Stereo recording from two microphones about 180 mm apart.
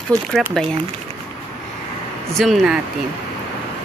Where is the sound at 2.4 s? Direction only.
Centre (ahead or behind).